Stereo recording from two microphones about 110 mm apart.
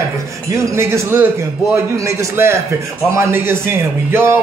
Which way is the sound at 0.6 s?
25° right (ahead or behind).